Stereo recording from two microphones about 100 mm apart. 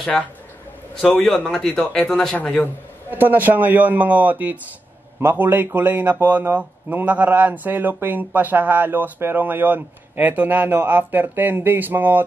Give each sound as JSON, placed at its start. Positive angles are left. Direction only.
{"t": 1.2, "sound": "a man's voice", "side_deg": 5}
{"t": 3.1, "sound": "a man's voice", "side_deg": -20}